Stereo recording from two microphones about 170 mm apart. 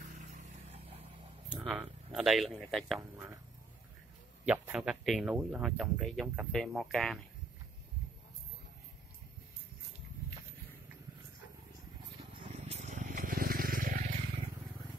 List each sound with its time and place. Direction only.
0.0 s vehicle: 45° right (ahead or behind)
1.5 s speech: 5° right (ahead or behind)
3.0 s speech: 15° right (ahead or behind)
4.5 s speech: 5° right (ahead or behind)
12.4 s a sound: 40° right (ahead or behind); by 14.0 s 55° right (ahead or behind)